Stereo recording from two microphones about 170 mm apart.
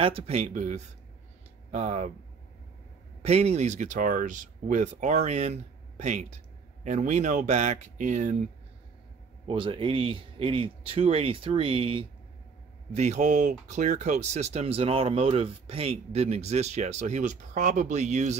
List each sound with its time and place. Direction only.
0.0 s speech: 35° right (ahead or behind)
3.2 s speech: 40° right (ahead or behind)
9.5 s speech: 30° right (ahead or behind)
12.9 s speech: 40° right (ahead or behind)